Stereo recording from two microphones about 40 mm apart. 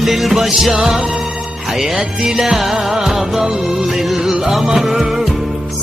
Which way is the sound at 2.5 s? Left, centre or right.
Centre.